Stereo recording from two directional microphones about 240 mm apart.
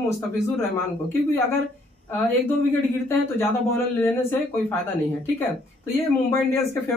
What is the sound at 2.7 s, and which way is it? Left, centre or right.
Speech, centre.